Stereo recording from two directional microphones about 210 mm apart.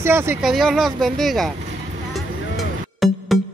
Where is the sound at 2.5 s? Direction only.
Centre (ahead or behind).